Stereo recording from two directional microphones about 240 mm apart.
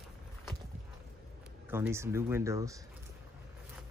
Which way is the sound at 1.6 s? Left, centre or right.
Centre.